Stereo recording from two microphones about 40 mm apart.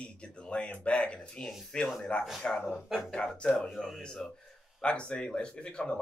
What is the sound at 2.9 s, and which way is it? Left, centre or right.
Speech, centre.